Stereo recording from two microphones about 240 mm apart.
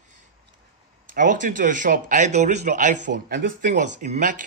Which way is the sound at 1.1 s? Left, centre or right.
Right.